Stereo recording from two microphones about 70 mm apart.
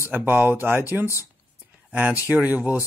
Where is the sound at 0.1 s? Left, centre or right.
Right.